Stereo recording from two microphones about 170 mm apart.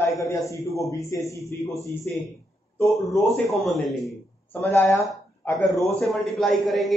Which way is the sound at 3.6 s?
Centre (ahead or behind).